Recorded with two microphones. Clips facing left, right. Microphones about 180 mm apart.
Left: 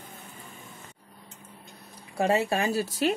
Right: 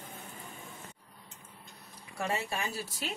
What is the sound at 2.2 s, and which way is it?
Speech, 90° left.